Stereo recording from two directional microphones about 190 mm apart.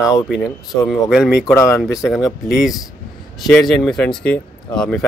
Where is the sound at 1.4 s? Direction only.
15° left (ahead or behind).